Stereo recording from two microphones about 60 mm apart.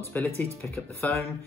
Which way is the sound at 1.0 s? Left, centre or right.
Left.